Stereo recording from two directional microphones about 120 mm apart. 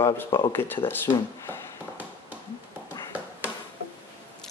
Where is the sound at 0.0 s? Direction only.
25° left (ahead or behind).